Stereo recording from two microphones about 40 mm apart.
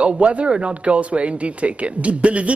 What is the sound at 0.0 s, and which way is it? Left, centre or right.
A man's voice, right.